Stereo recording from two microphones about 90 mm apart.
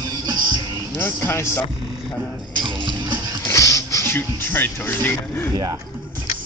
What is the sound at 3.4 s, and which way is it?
Speech, 35° left (ahead or behind).